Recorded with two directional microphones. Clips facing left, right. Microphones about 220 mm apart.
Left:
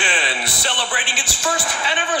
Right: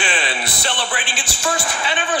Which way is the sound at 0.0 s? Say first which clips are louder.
Right 1 dB; 40° right (ahead or behind).